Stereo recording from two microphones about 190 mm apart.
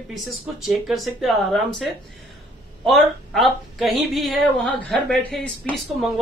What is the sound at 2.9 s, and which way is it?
A woman's voice, centre (ahead or behind).